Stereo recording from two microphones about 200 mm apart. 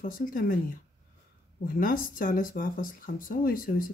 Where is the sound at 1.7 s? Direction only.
45° left (ahead or behind).